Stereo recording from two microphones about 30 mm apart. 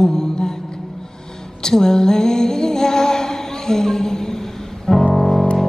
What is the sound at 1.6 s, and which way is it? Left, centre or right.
Music, centre.